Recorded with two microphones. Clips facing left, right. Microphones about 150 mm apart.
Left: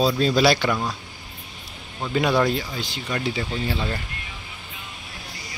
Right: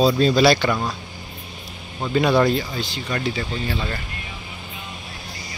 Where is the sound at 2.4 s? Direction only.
5° left (ahead or behind).